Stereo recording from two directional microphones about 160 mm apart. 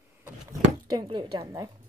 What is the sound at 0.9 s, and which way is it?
Speech, 25° right (ahead or behind).